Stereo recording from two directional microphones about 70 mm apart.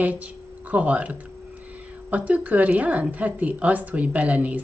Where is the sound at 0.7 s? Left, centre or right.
Right.